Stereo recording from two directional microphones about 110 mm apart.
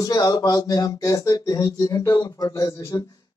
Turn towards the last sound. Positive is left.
turn(degrees=30)  # may be behind; listen again after turning